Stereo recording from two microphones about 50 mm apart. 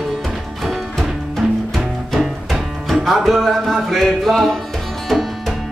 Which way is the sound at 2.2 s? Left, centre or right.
Centre.